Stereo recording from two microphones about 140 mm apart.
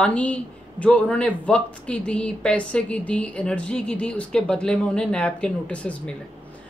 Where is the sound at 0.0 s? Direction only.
10° left (ahead or behind).